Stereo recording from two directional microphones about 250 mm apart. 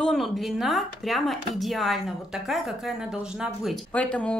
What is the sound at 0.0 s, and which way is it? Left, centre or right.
Speech, centre.